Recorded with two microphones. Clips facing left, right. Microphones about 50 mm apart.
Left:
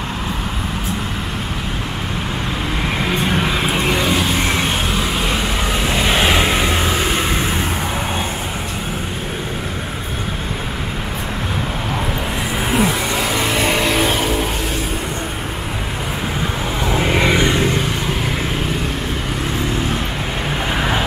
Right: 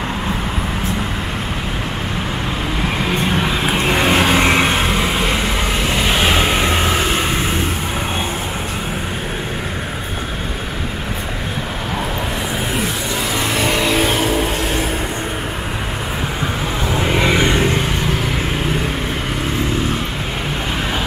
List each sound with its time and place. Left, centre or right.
3.0 s vehicle: centre
4.1 s vehicle: right
5.9 s vehicle: centre
13.4 s vehicle: centre
16.8 s vehicle: centre
17.4 s vehicle: centre